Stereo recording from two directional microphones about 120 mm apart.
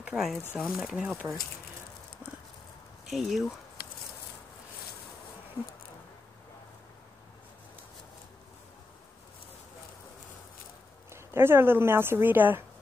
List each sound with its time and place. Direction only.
0.0 s speech: 5° right (ahead or behind)
3.1 s speech: centre (ahead or behind)
11.1 s speech: 20° right (ahead or behind)